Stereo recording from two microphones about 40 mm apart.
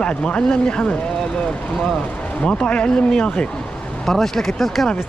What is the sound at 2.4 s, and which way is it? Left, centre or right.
Speech, left.